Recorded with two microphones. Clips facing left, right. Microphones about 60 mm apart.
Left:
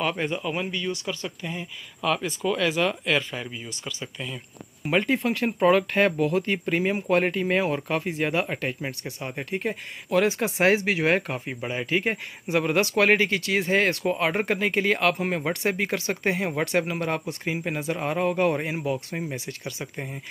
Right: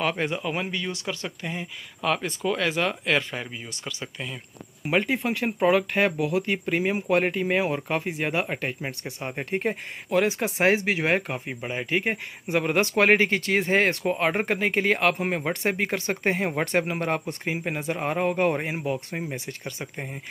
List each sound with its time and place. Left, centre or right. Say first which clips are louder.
0.2 s speech: even; right
4.0 s speech: even; right
4.8 s speech: left 1 dB; centre
10.0 s speech: left 1 dB; centre